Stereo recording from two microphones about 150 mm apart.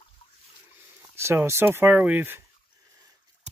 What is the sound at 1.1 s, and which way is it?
Speech, 15° right (ahead or behind).